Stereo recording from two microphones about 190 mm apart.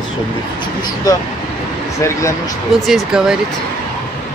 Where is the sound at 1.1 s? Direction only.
20° left (ahead or behind).